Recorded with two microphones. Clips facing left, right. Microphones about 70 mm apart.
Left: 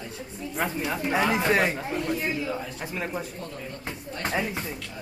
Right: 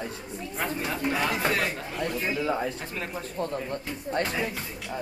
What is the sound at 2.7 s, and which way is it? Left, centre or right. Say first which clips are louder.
Speech: left 3 dB; centre.